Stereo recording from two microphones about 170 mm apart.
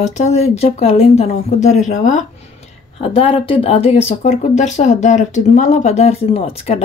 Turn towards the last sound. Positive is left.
turn(degrees=35)  # may be behind; listen again after turning